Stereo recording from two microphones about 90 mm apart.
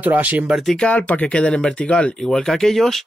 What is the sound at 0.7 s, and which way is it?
Speech, 15° left (ahead or behind).